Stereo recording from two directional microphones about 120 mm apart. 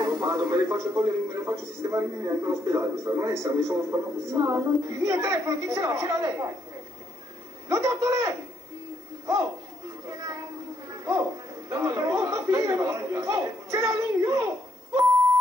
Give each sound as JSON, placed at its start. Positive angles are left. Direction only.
{"t": 0.0, "sound": "a man's voice", "side_deg": -30}
{"t": 7.6, "sound": "a man's voice", "side_deg": -25}
{"t": 10.9, "sound": "a sound", "side_deg": -30}
{"t": 11.7, "sound": "a man's voice", "side_deg": -25}